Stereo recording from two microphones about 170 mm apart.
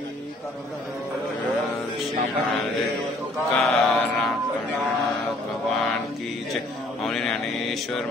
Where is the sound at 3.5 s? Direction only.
5° left (ahead or behind).